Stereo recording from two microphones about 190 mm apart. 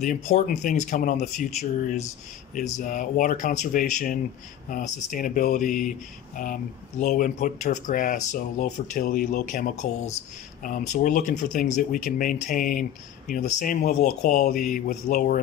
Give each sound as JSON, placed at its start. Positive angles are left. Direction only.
{"t": 0.0, "sound": "speech", "side_deg": 35}